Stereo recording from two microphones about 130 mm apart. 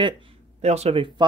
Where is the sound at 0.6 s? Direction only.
55° right (ahead or behind).